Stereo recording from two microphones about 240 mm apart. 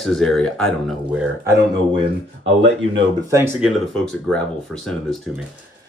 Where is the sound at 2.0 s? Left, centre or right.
Right.